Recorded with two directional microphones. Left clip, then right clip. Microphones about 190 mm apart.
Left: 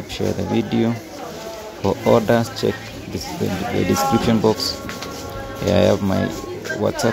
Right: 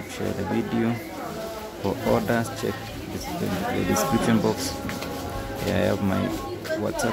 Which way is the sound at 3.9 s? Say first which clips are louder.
Left 4 dB; 15° left (ahead or behind).